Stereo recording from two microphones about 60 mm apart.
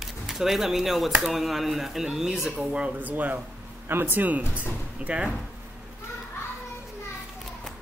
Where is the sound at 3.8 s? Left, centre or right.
Right.